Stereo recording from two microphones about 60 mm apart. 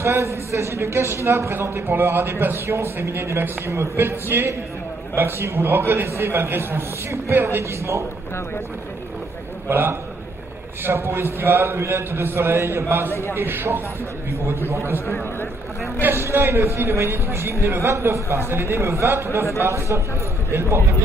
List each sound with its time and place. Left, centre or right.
0.0 s speech: right
2.6 s speech: right
9.7 s speech: right
16.1 s a man's voice: right